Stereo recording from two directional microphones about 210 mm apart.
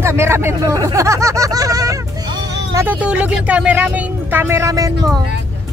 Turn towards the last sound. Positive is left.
turn(degrees=-15)  # may be behind; listen again after turning